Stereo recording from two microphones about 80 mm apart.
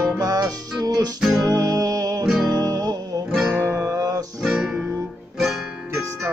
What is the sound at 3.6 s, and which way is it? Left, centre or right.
Music, right.